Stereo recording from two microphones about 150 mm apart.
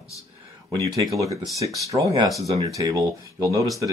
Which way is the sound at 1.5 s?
20° right (ahead or behind).